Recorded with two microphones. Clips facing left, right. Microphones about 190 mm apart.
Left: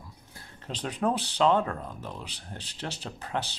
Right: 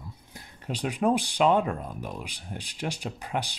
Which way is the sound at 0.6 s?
10° right (ahead or behind).